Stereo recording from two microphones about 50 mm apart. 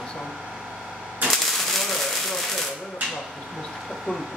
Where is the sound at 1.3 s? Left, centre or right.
Centre.